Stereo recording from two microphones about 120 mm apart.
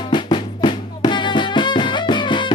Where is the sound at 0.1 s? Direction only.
40° left (ahead or behind).